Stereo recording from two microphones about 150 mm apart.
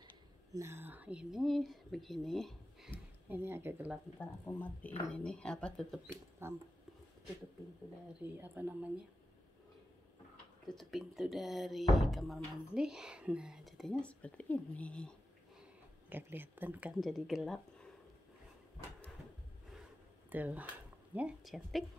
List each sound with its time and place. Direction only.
0.6 s speech: 15° right (ahead or behind); by 2.9 s centre (ahead or behind)
2.9 s speech: 15° right (ahead or behind)
4.5 s speech: 10° left (ahead or behind)
6.4 s speech: 15° right (ahead or behind)
8.2 s speech: 10° right (ahead or behind)
10.7 s speech: centre (ahead or behind)
16.1 s speech: 15° right (ahead or behind)
17.0 s speech: centre (ahead or behind)
20.2 s speech: 10° right (ahead or behind)